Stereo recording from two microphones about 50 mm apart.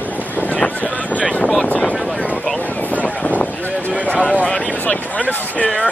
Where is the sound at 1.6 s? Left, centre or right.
Left.